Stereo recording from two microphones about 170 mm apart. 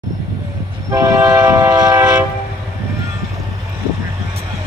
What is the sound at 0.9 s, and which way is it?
Train, 15° right (ahead or behind).